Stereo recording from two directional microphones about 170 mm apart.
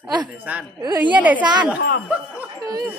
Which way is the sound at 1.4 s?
25° right (ahead or behind).